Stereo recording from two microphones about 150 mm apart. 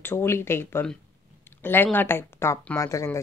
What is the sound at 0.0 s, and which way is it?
A woman's voice, 15° left (ahead or behind).